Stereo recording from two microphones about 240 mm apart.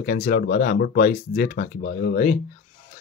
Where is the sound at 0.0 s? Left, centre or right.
Left.